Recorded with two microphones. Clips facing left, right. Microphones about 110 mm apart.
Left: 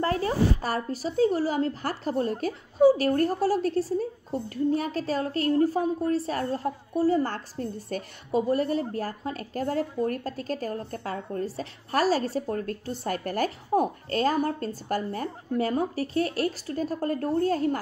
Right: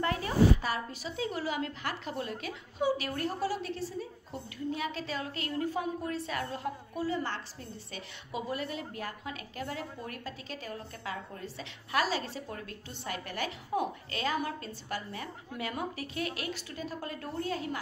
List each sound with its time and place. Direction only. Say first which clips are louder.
0.0 s a woman's voice: left 2 dB; 40° left (ahead or behind)